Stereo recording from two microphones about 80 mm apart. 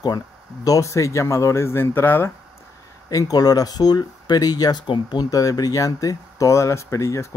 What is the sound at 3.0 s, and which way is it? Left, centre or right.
Speech, left.